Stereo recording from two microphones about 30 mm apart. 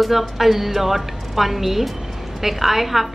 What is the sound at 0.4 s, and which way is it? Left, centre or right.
A woman's voice, centre.